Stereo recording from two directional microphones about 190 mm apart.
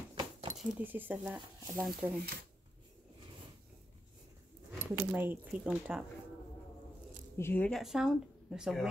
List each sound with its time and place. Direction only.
0.1 s keys jangling: 25° right (ahead or behind)
0.6 s speech: 10° right (ahead or behind)
4.7 s speech: 10° right (ahead or behind)
7.3 s speech: 10° left (ahead or behind)